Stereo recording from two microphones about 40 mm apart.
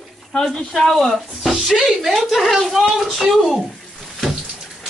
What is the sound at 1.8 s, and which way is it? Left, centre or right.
Speech, centre.